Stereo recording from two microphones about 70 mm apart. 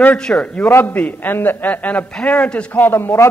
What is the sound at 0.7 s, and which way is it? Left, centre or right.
Speech, left.